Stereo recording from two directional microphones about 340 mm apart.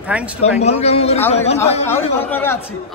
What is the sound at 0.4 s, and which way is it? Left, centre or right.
Speech, centre.